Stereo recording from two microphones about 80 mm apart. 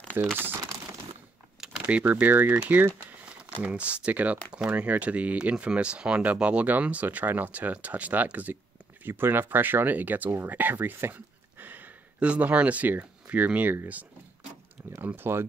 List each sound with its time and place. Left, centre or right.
0.1 s speech: right
1.6 s a sound: centre
2.0 s speech: right
15.0 s speech: right